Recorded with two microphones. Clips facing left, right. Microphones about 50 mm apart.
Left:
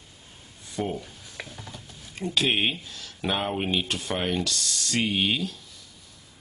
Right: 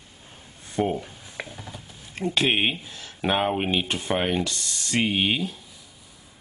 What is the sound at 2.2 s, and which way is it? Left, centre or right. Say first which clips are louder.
Speech: right 2 dB; right.